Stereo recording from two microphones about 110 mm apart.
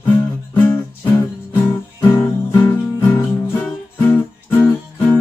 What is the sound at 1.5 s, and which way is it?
Music, 20° left (ahead or behind).